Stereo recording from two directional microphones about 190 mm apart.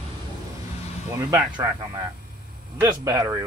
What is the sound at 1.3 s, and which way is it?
Speech, 20° right (ahead or behind).